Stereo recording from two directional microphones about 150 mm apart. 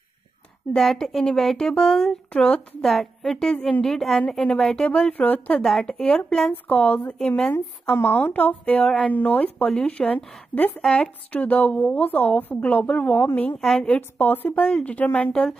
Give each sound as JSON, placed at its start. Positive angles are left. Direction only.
{"t": 0.7, "sound": "speech", "side_deg": 0}